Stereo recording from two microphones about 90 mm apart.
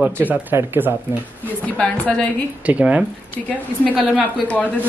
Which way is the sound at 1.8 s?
10° left (ahead or behind).